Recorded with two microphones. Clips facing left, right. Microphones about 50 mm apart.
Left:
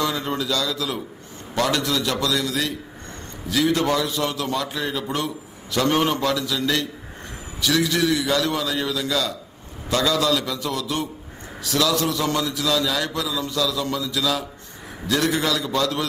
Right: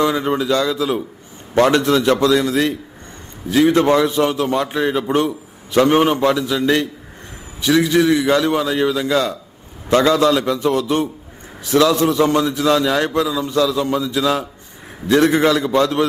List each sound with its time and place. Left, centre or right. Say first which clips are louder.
0.0 s a man's voice: right 7 dB; right